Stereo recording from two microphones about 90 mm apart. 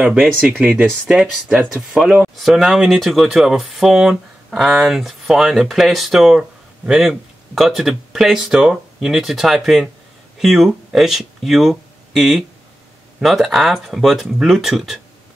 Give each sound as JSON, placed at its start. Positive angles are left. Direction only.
{"t": 0.4, "sound": "speech", "side_deg": -15}
{"t": 1.0, "sound": "speech", "side_deg": -5}
{"t": 2.3, "sound": "speech", "side_deg": -5}